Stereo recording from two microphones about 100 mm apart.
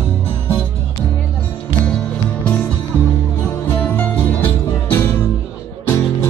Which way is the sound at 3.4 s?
20° left (ahead or behind).